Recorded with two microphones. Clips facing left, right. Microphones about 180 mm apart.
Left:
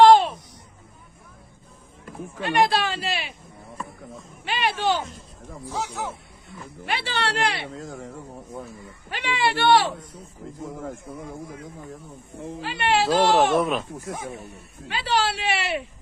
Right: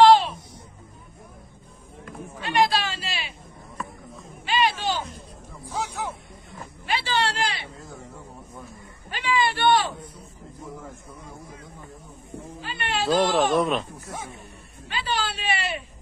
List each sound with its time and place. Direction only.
0.0 s children playing: 50° left (ahead or behind)
2.4 s a woman's voice: 55° left (ahead or behind)
4.5 s a woman's voice: 60° left (ahead or behind)
6.9 s a woman's voice: 65° left (ahead or behind); by 8.1 s 90° left
9.1 s speech: 70° left (ahead or behind)
12.5 s speech: 75° left (ahead or behind)
13.6 s speech: centre (ahead or behind)
14.9 s speech: 75° left (ahead or behind)